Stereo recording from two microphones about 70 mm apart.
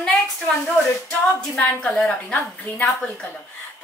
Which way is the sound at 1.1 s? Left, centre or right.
Centre.